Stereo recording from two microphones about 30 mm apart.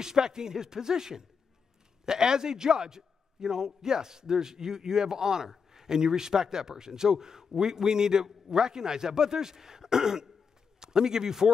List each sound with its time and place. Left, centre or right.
0.0 s a man's voice: centre